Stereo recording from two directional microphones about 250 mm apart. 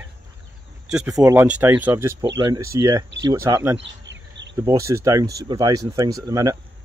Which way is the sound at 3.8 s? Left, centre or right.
Right.